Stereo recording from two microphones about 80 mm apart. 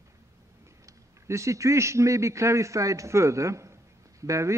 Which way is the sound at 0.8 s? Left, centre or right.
Right.